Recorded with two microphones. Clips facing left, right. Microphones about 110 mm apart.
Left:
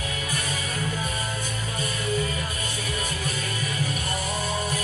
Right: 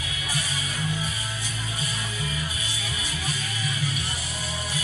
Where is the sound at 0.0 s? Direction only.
45° left (ahead or behind).